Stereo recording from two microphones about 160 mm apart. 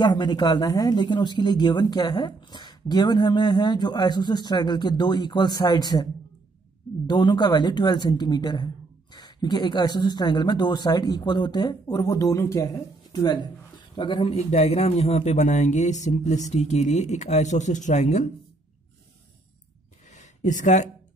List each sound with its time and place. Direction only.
0.0 s a woman's voice: 30° left (ahead or behind)
7.1 s a woman's voice: 25° left (ahead or behind); by 18.2 s 45° left (ahead or behind)
20.1 s a sound: 50° left (ahead or behind)